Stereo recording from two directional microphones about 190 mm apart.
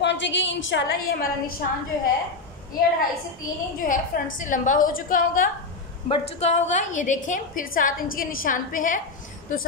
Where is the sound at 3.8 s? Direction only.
45° left (ahead or behind).